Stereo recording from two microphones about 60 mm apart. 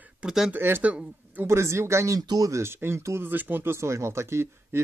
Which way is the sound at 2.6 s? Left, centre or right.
Right.